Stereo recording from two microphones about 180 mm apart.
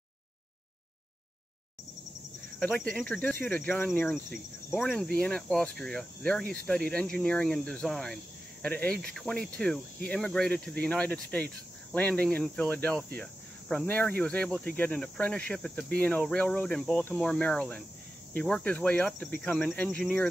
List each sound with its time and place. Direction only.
2.6 s speech: 5° left (ahead or behind)
13.2 s cricket: 10° left (ahead or behind)
14.8 s speech: 10° left (ahead or behind)